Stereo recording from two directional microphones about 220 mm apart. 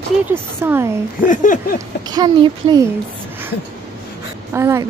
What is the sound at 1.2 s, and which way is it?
Speech, 35° left (ahead or behind).